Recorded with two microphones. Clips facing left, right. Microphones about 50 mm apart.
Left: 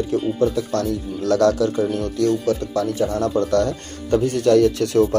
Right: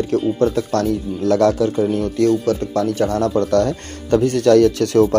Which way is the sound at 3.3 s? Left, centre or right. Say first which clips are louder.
Right 2 dB; right.